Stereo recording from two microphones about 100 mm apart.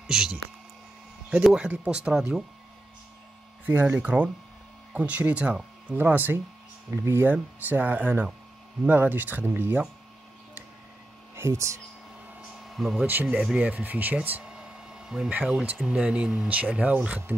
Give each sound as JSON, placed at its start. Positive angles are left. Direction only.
{"t": 0.0, "sound": "speech", "side_deg": -5}
{"t": 1.4, "sound": "speech", "side_deg": -10}
{"t": 3.6, "sound": "speech", "side_deg": -15}
{"t": 11.3, "sound": "speech", "side_deg": -25}
{"t": 12.6, "sound": "speech", "side_deg": 0}
{"t": 13.0, "sound": "speech", "side_deg": -20}
{"t": 14.4, "sound": "a sound", "side_deg": -5}
{"t": 15.7, "sound": "speech", "side_deg": -10}